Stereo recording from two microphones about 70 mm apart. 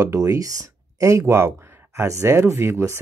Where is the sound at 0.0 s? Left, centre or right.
Right.